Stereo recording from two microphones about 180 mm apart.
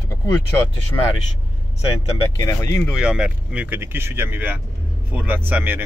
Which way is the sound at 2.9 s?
5° right (ahead or behind).